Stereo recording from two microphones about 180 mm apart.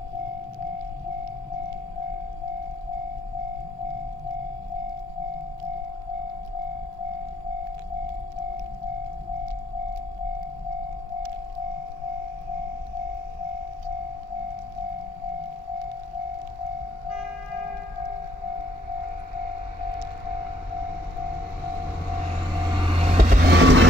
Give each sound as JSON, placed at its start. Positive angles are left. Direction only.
{"t": 22.8, "sound": "vehicle", "side_deg": -30}
{"t": 23.4, "sound": "vehicle", "side_deg": -85}